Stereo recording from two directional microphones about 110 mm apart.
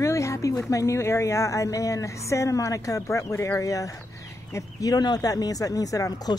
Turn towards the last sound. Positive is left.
turn(degrees=30)  # may be behind; listen again after turning